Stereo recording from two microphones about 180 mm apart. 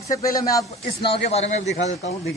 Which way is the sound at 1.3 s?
35° left (ahead or behind).